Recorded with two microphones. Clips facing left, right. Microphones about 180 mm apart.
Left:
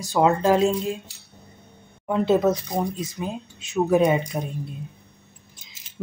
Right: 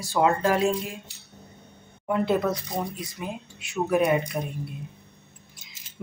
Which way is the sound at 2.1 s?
20° left (ahead or behind).